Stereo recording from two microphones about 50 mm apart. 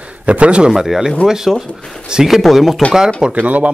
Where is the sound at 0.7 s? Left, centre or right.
Centre.